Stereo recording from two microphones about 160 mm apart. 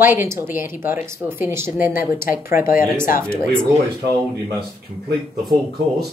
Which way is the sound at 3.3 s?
5° left (ahead or behind).